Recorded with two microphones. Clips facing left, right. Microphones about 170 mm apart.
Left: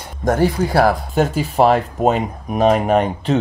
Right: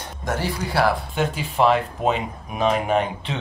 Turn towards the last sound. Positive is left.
turn(degrees=40)  # may be behind; listen again after turning